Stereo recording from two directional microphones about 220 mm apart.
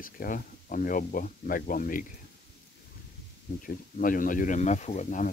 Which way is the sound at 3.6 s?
40° left (ahead or behind).